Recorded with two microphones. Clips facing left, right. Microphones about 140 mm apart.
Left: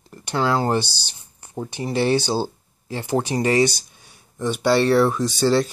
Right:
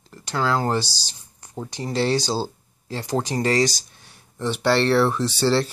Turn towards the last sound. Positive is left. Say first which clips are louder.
# left 2 dB
turn(degrees=15)  # may be behind; listen again after turning